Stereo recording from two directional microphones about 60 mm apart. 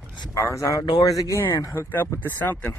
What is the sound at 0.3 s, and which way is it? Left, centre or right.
Speech, left.